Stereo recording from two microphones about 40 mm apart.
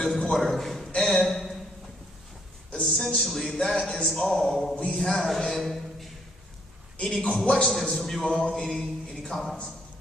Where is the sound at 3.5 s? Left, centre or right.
Centre.